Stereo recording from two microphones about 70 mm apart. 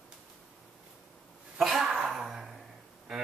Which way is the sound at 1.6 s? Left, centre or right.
Centre.